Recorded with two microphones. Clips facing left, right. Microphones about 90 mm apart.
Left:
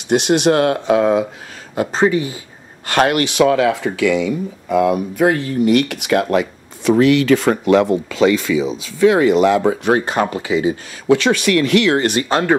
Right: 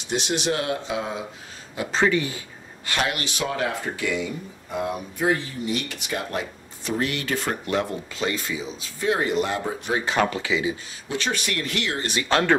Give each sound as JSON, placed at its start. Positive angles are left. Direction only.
{"t": 0.1, "sound": "speech", "side_deg": 60}
{"t": 1.8, "sound": "speech", "side_deg": 40}
{"t": 2.9, "sound": "speech", "side_deg": 60}
{"t": 10.3, "sound": "speech", "side_deg": 40}
{"t": 11.1, "sound": "speech", "side_deg": 90}
{"t": 12.3, "sound": "speech", "side_deg": 10}